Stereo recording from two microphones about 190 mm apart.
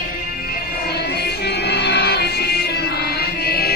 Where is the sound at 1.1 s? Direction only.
60° left (ahead or behind).